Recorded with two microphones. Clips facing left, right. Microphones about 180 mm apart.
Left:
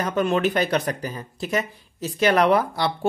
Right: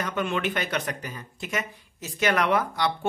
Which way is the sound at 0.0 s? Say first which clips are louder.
Left 6 dB; 40° left (ahead or behind).